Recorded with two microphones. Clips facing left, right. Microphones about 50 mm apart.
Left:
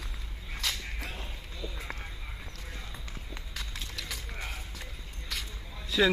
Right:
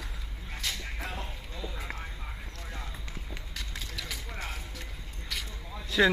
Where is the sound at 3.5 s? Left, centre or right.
Centre.